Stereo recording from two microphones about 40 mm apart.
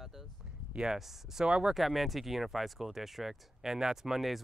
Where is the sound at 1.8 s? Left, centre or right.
Centre.